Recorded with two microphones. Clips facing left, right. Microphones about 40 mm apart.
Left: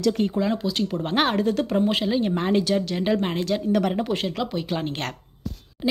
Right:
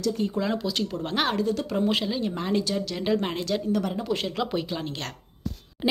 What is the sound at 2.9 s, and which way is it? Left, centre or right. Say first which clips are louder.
Speech: left 3 dB; centre.